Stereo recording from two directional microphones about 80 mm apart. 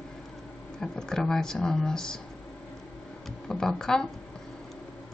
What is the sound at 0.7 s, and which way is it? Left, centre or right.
Speech, centre.